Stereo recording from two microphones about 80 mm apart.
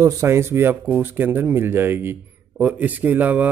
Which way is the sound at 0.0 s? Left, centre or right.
Right.